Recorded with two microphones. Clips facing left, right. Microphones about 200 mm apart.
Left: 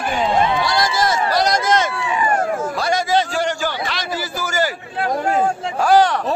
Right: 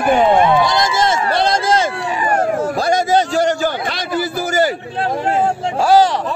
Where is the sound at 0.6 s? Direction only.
20° right (ahead or behind).